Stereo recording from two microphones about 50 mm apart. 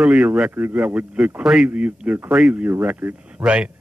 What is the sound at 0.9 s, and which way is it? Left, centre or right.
Speech, right.